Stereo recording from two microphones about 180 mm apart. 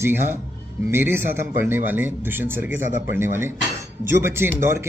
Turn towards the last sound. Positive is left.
turn(degrees=-15)  # may be behind; listen again after turning